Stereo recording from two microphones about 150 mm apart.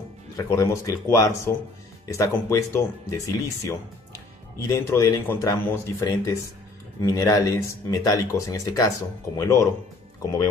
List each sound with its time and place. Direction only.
0.4 s speech: 20° left (ahead or behind)